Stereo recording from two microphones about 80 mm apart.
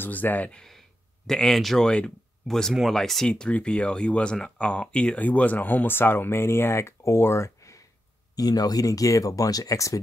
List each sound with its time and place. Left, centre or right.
0.0 s speech: left
8.4 s speech: left